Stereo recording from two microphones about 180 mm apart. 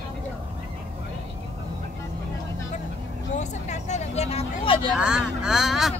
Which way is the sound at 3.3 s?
40° left (ahead or behind).